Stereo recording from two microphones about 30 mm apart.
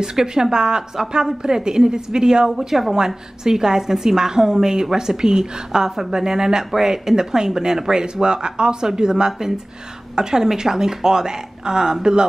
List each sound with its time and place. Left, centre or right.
0.0 s a woman's voice: right
2.5 s a woman's voice: centre
3.4 s a woman's voice: centre
8.0 s a woman's voice: right